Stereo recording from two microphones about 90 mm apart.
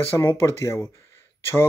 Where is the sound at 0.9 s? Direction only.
30° left (ahead or behind).